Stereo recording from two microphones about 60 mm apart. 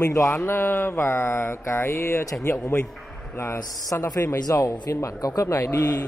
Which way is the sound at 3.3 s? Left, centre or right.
Left.